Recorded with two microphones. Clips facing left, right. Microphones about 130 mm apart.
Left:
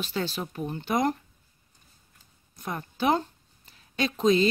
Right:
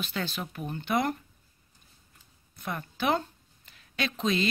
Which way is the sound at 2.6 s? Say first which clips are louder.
Left 3 dB; 25° left (ahead or behind).